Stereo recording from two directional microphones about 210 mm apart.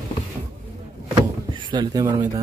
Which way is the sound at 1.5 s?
20° right (ahead or behind).